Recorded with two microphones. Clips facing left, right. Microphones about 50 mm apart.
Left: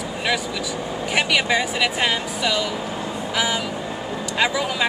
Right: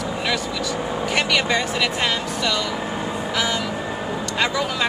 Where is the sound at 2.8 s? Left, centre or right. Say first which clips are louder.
Right 2 dB; centre.